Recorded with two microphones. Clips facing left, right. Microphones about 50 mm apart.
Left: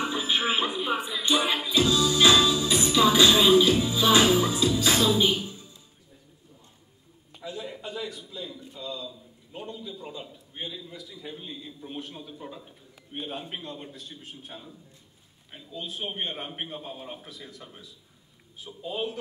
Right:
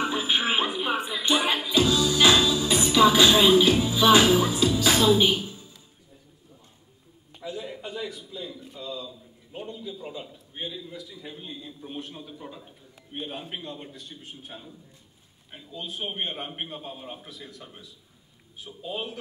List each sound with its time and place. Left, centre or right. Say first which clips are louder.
0.0 s music: right 1 dB; right
7.3 s a sound: right 2 dB; centre
11.2 s a man's voice: even; centre
15.9 s a man's voice: right 1 dB; centre